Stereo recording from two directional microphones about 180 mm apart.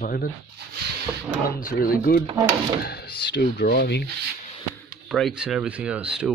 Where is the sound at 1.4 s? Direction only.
55° left (ahead or behind).